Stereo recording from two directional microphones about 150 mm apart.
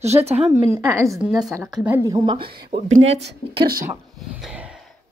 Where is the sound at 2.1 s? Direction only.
30° right (ahead or behind).